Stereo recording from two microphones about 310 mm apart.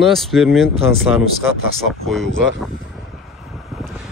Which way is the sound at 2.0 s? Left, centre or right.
Centre.